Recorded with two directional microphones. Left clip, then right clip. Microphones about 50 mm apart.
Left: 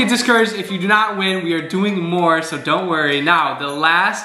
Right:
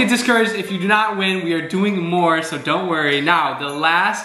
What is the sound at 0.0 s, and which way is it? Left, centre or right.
A man's voice, left.